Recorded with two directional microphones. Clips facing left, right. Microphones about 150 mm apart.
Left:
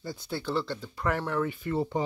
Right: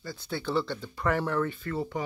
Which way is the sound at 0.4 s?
Centre (ahead or behind).